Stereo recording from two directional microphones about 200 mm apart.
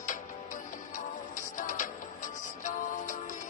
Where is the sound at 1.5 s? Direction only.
40° left (ahead or behind).